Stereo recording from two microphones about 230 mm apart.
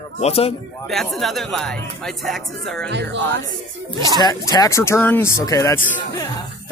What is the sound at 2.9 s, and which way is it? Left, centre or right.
Speech, right.